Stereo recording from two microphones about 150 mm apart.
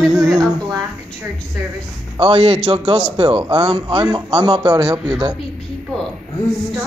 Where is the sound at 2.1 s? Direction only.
40° right (ahead or behind).